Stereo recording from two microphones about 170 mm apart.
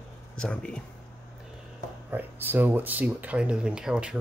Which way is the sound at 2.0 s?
10° right (ahead or behind).